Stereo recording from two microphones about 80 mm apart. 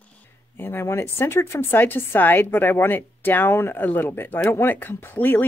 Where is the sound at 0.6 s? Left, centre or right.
Left.